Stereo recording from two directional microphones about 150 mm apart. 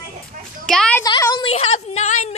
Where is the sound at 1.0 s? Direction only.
30° left (ahead or behind).